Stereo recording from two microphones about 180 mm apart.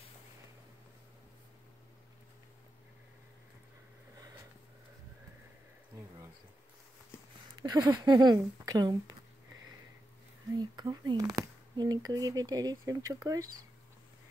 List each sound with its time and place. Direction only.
7.5 s speech: 25° right (ahead or behind)
10.6 s speech: 25° right (ahead or behind)